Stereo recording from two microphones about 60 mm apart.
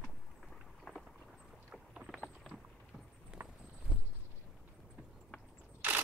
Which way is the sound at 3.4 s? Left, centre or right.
Right.